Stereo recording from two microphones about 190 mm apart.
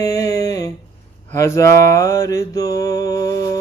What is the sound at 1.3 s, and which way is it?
Mantra, 15° left (ahead or behind).